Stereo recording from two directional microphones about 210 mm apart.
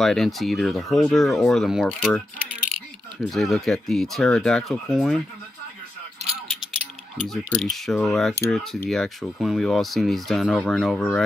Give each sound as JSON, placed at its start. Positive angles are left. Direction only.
{"t": 0.0, "sound": "speech", "side_deg": 0}
{"t": 7.5, "sound": "speech", "side_deg": 0}